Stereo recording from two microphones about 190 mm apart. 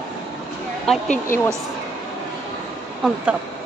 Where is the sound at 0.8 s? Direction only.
5° left (ahead or behind).